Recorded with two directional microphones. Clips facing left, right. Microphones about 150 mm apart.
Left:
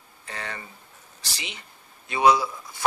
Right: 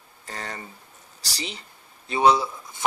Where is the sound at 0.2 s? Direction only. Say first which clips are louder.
Right 1 dB; 40° right (ahead or behind).